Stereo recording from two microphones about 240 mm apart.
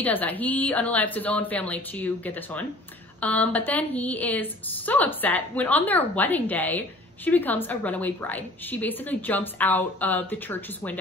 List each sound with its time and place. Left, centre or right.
0.0 s a woman's voice: centre